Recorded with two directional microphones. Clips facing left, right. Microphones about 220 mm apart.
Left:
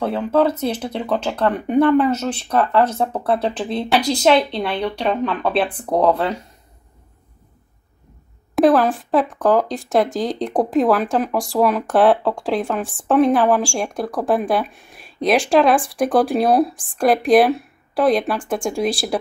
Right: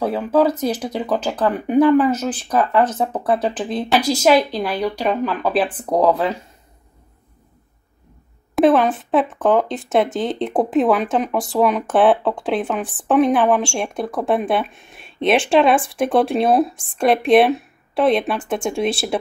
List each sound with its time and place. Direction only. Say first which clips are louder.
0.0 s speech: right 1 dB; 5° right (ahead or behind)
8.5 s a woman's voice: even; centre (ahead or behind)